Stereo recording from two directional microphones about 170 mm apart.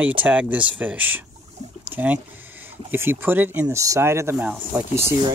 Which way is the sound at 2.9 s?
10° right (ahead or behind).